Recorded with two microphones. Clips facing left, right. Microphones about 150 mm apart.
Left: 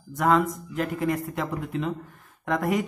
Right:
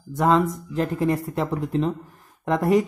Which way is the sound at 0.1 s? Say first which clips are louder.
Right 2 dB; 25° right (ahead or behind).